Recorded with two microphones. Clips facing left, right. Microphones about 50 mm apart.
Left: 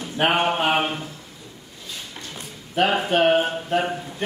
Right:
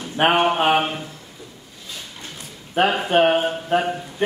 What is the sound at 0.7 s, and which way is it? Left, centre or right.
Speech, centre.